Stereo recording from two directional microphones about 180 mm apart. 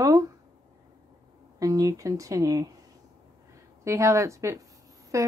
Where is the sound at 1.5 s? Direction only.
20° right (ahead or behind).